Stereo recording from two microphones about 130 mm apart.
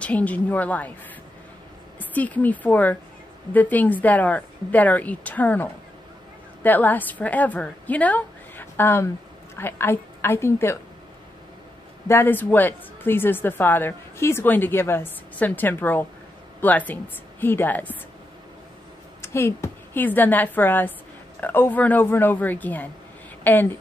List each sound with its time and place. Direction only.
0.0 s a woman's voice: 10° left (ahead or behind)
2.0 s a woman's voice: 10° left (ahead or behind)
12.1 s a woman's voice: 15° left (ahead or behind)
19.2 s a woman's voice: 20° left (ahead or behind)